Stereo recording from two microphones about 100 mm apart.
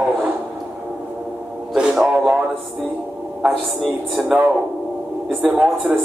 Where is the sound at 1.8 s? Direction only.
5° right (ahead or behind).